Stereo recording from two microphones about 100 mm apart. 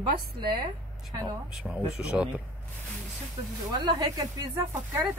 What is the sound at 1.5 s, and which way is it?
Speech, 10° right (ahead or behind).